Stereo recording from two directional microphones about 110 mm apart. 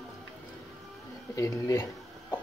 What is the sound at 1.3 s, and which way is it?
Speech, 30° left (ahead or behind).